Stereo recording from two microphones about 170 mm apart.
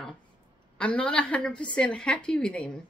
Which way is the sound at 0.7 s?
5° left (ahead or behind).